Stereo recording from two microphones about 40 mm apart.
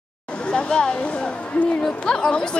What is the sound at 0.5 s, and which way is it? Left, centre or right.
Speech, left.